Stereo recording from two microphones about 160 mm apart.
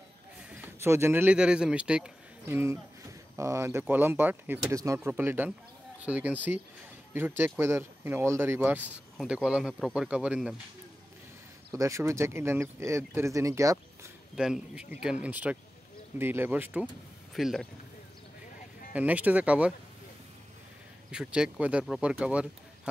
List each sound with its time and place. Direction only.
0.5 s speech: 15° right (ahead or behind)
11.7 s speech: 20° right (ahead or behind)
14.3 s speech: 5° right (ahead or behind)
17.3 s speech: centre (ahead or behind)
18.9 s speech: 10° right (ahead or behind)
21.1 s speech: 5° right (ahead or behind)